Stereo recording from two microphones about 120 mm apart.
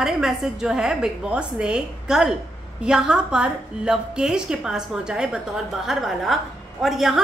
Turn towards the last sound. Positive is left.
turn(degrees=0)  # may be behind; listen again after turning